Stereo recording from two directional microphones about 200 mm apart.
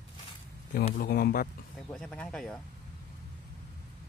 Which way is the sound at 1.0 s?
50° left (ahead or behind).